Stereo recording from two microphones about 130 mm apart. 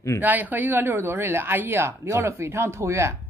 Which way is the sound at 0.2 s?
15° right (ahead or behind).